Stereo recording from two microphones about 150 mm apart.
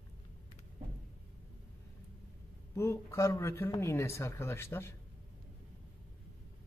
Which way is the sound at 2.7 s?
15° left (ahead or behind).